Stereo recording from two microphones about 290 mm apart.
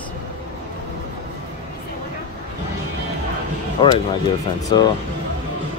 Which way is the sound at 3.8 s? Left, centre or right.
Centre.